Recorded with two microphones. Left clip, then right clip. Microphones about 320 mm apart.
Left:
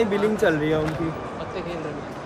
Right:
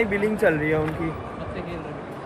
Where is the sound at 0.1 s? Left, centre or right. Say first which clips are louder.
Even; centre.